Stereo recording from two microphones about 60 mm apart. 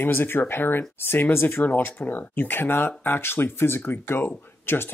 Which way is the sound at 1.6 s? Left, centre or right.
Left.